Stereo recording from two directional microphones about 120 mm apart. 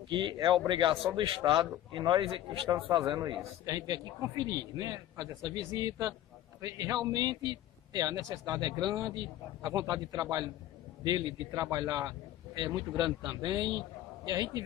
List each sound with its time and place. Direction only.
0.1 s a man's voice: 40° right (ahead or behind)
2.7 s a man's voice: 35° right (ahead or behind)